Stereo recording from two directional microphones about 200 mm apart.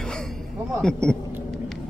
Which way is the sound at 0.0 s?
5° left (ahead or behind).